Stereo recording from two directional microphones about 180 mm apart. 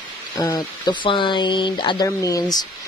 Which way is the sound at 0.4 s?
15° left (ahead or behind).